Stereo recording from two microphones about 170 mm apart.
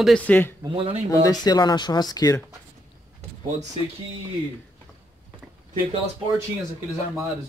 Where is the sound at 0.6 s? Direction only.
30° right (ahead or behind).